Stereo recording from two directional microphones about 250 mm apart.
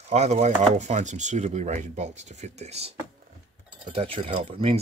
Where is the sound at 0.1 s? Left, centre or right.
Right.